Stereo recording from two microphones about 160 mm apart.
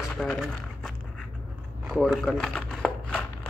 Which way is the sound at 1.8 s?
Centre (ahead or behind).